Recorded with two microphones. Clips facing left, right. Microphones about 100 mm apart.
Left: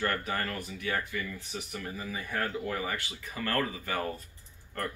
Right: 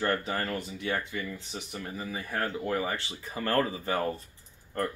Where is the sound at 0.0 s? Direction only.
25° right (ahead or behind).